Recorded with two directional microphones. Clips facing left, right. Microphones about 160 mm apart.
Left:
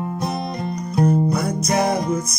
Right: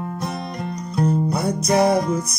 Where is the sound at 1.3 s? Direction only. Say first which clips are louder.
Even; 30° right (ahead or behind).